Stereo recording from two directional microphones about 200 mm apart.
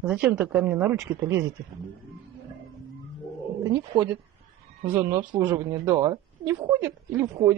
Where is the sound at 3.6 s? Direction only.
20° right (ahead or behind).